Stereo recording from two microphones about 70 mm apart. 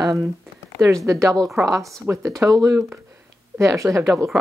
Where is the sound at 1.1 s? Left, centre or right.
Right.